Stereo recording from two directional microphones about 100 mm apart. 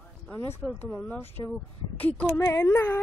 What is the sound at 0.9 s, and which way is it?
Speech, 5° left (ahead or behind).